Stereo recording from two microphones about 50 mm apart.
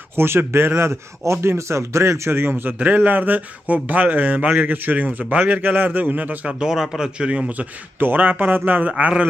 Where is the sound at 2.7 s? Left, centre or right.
Right.